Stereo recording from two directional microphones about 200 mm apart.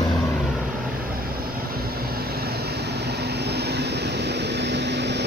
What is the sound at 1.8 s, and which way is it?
Vehicle, 50° right (ahead or behind).